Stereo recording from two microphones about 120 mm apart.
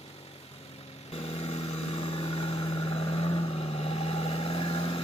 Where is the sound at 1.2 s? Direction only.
55° left (ahead or behind).